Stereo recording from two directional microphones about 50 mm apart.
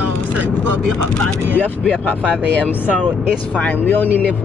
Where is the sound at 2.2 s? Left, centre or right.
Left.